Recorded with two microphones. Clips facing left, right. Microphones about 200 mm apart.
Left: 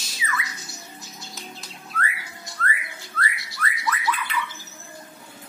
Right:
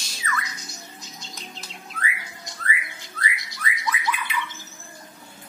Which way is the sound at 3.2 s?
15° right (ahead or behind).